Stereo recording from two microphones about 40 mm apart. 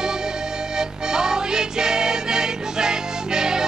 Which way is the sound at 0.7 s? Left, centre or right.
Centre.